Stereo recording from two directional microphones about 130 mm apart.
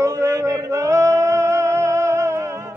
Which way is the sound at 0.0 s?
20° right (ahead or behind).